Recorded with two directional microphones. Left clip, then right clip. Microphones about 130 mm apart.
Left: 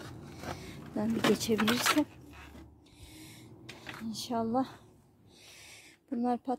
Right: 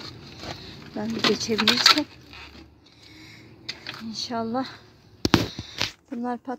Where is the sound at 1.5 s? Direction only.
65° right (ahead or behind).